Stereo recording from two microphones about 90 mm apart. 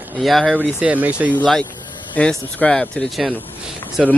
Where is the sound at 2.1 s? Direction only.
10° left (ahead or behind).